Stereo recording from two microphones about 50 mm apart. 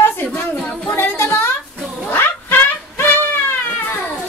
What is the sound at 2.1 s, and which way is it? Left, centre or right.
Cat, left.